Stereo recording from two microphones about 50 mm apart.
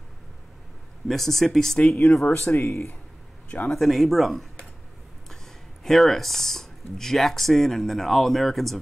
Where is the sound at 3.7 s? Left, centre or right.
Centre.